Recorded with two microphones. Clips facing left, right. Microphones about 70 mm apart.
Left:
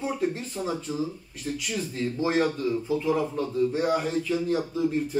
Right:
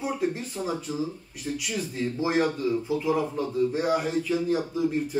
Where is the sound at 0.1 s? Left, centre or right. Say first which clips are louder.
Even; centre.